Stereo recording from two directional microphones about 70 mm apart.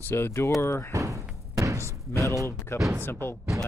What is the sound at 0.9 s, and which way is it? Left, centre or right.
Slam, right.